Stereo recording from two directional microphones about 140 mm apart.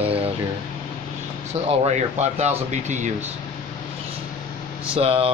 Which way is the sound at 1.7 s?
50° right (ahead or behind).